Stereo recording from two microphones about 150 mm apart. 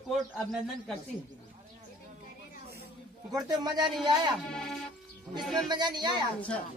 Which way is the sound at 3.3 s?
25° right (ahead or behind).